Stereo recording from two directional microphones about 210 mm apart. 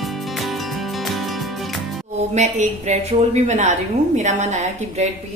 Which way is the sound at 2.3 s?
35° right (ahead or behind).